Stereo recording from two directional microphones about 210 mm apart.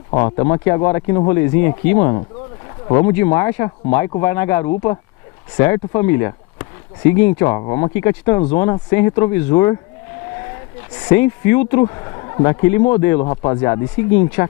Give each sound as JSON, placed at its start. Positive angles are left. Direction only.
{"t": 0.1, "sound": "speech", "side_deg": 25}
{"t": 3.2, "sound": "speech", "side_deg": 15}
{"t": 6.0, "sound": "a sound", "side_deg": 15}
{"t": 7.3, "sound": "speech", "side_deg": 20}
{"t": 11.1, "sound": "speech", "side_deg": 10}